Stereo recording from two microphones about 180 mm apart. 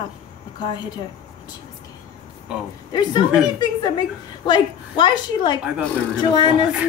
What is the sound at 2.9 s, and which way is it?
A woman's voice, 25° left (ahead or behind).